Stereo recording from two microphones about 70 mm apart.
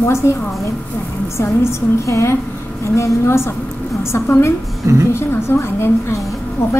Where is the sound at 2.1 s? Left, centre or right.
Left.